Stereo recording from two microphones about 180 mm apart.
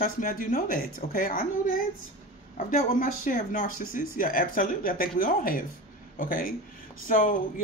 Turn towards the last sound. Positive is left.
turn(degrees=50)  # may be behind; listen again after turning